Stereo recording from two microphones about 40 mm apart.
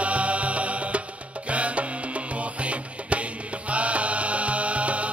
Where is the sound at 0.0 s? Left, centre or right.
Right.